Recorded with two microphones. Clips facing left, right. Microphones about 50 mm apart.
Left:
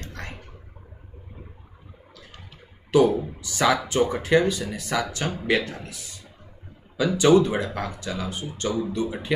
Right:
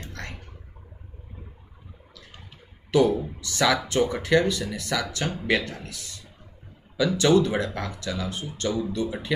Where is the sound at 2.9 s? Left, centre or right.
Left.